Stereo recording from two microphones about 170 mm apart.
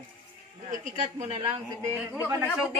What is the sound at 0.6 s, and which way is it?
Speech, 45° right (ahead or behind).